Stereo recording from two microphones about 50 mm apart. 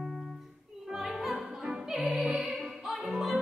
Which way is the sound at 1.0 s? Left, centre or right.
Centre.